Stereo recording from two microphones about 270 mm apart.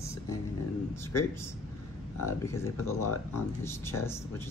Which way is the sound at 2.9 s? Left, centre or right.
Left.